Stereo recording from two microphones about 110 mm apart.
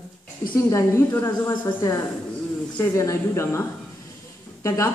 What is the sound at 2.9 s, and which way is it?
A woman's voice, 25° left (ahead or behind).